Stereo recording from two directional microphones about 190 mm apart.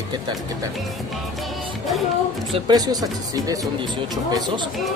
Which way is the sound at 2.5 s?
20° right (ahead or behind).